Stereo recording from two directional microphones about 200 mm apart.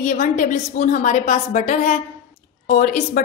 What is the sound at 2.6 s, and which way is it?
Speech, 55° left (ahead or behind).